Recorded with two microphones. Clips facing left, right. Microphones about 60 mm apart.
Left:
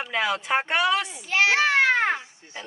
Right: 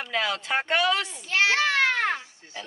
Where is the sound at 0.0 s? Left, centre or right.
Centre.